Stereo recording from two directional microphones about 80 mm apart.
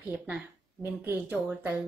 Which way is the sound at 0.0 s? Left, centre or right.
Centre.